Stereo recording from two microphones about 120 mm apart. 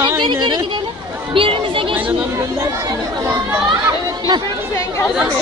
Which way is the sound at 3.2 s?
20° right (ahead or behind).